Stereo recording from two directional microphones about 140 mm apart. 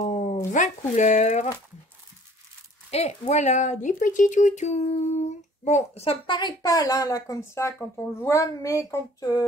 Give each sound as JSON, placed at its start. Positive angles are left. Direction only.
{"t": 0.0, "sound": "a sound", "side_deg": 60}
{"t": 0.5, "sound": "speech", "side_deg": 60}
{"t": 2.9, "sound": "speech", "side_deg": 50}